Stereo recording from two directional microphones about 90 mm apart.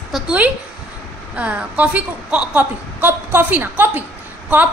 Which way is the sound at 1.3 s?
15° right (ahead or behind).